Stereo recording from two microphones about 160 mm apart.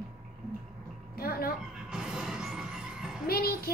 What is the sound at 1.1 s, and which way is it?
Speech, 70° left (ahead or behind).